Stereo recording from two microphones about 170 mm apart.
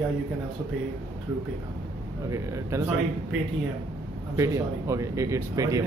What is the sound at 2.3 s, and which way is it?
Speech, 15° right (ahead or behind).